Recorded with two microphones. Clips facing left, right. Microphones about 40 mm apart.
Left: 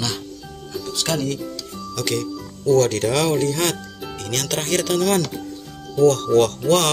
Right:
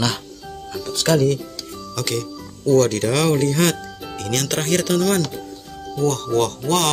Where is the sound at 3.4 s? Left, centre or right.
Centre.